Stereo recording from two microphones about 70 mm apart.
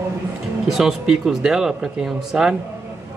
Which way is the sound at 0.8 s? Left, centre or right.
Centre.